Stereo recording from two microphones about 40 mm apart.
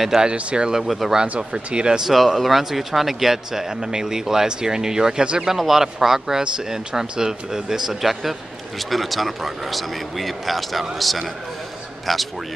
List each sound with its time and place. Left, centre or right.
0.0 s speech: centre
0.3 s speech: right
0.7 s a man's voice: centre
1.2 s speech: right
2.0 s speech: centre; by 5.5 s right
5.5 s speech: centre
6.4 s a man's voice: right; by 12.2 s centre